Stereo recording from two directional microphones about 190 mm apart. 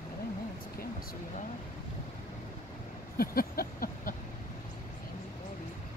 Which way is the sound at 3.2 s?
50° left (ahead or behind).